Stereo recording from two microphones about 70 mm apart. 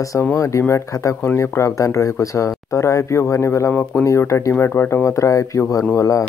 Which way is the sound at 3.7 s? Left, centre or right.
Left.